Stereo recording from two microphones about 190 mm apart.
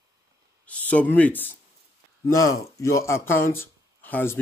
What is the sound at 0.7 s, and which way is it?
Speech, 5° left (ahead or behind).